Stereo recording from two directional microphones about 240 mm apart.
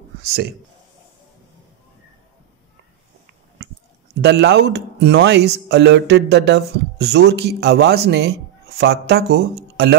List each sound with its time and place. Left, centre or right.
0.2 s speech: right
4.2 s speech: right